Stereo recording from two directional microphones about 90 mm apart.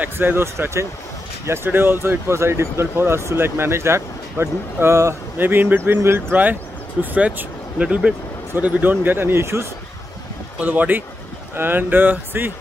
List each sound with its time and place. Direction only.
0.0 s speech: 25° right (ahead or behind)
10.6 s speech: 20° right (ahead or behind)